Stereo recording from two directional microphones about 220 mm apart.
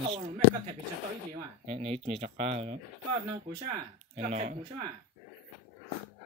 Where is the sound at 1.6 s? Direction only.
25° right (ahead or behind).